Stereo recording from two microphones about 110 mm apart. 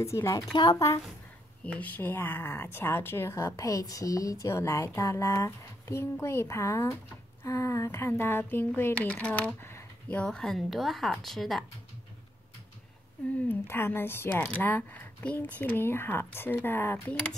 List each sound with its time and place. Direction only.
0.0 s speech: 25° left (ahead or behind)
0.5 s speech: 40° left (ahead or behind)
1.6 s speech: 10° left (ahead or behind)
13.5 s speech: 20° left (ahead or behind)